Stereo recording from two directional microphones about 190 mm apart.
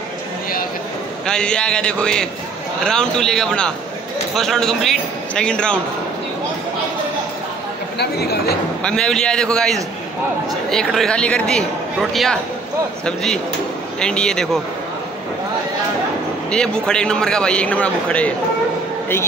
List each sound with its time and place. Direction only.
1.2 s a man's voice: 5° left (ahead or behind)
8.0 s speech: 55° left (ahead or behind)
8.8 s a man's voice: 5° left (ahead or behind)
16.4 s a man's voice: 5° left (ahead or behind)